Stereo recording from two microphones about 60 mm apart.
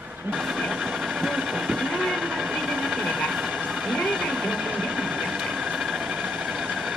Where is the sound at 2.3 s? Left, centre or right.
Centre.